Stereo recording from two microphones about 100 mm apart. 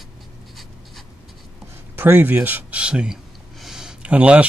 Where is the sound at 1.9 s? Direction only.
20° right (ahead or behind).